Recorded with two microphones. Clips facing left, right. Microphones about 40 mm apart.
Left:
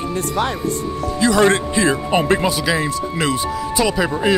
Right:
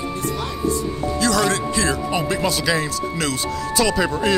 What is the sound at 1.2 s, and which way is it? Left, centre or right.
Speech, left.